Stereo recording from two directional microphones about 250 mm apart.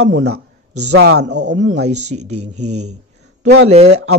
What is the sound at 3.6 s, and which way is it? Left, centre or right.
Speech, right.